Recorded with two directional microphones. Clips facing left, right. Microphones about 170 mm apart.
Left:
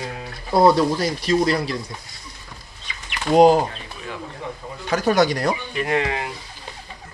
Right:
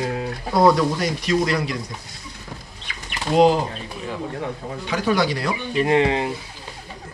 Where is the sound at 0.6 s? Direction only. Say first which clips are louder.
Even; 30° left (ahead or behind).